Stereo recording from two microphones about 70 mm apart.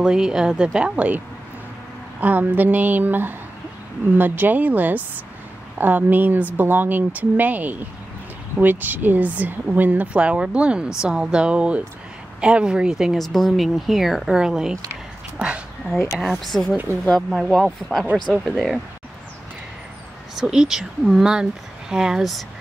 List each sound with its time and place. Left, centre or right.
0.0 s speech: centre
16.2 s speech: centre
20.3 s speech: centre